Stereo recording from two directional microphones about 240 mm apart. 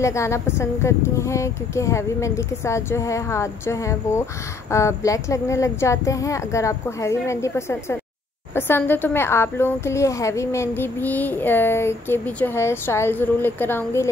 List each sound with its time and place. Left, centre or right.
0.0 s a woman's voice: centre